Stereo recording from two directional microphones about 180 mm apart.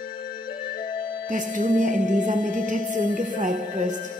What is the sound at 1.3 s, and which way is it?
A woman's voice, 45° right (ahead or behind).